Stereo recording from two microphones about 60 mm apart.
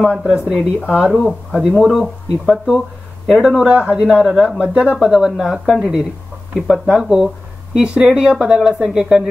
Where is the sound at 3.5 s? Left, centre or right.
Centre.